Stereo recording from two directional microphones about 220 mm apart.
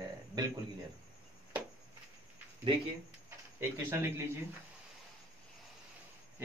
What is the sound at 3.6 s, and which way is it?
Speech, 10° right (ahead or behind).